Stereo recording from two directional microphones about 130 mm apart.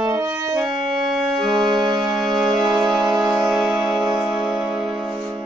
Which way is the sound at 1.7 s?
35° right (ahead or behind).